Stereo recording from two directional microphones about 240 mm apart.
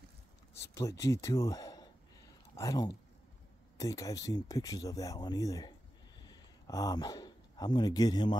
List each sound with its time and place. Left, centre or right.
0.6 s speech: centre